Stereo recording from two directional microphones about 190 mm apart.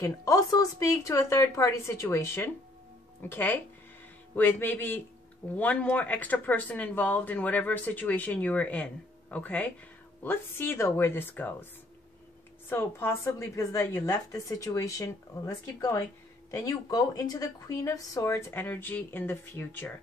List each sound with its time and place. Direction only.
0.0 s speech: 20° left (ahead or behind)
12.6 s speech: 10° left (ahead or behind)